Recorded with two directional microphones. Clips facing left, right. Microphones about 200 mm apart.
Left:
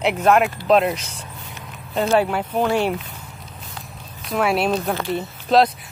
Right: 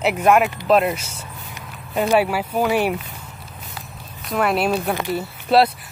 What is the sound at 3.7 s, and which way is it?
Speech, centre (ahead or behind).